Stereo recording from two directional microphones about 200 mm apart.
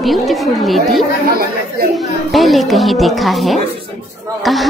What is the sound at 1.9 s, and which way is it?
A woman's voice, centre (ahead or behind).